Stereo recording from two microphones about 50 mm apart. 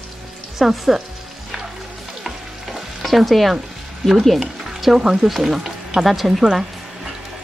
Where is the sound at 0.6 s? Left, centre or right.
Centre.